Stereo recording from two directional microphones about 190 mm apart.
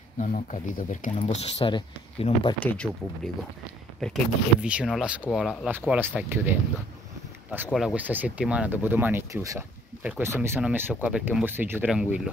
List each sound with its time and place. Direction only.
0.2 s speech: 45° left (ahead or behind)
1.1 s speech: 30° left (ahead or behind)
2.6 s speech: 10° left (ahead or behind)
4.0 s speech: centre (ahead or behind)
7.7 s speech: 5° right (ahead or behind)